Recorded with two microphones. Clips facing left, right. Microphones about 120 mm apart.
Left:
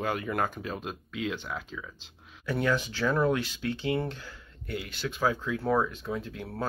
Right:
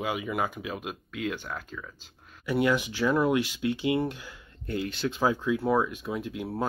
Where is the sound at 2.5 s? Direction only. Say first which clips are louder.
Right 3 dB; 10° right (ahead or behind).